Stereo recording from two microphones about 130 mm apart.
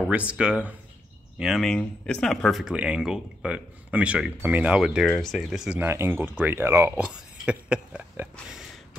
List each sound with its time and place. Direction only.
0.1 s speech: 10° right (ahead or behind)
5.8 s speech: 15° right (ahead or behind)
7.1 s speech: 5° right (ahead or behind)